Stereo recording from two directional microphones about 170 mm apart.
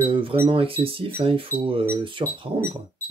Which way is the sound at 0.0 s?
30° right (ahead or behind).